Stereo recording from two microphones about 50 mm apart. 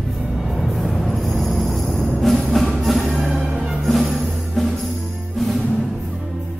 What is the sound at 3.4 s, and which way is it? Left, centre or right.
Music, right.